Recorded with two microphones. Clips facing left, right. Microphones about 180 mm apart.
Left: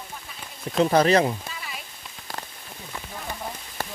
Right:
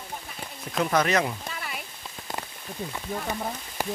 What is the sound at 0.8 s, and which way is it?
Speech, 30° left (ahead or behind).